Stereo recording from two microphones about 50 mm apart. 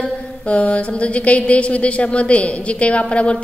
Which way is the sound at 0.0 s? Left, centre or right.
Left.